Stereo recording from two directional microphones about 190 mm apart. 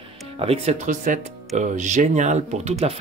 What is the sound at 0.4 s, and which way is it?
Speech, 35° right (ahead or behind).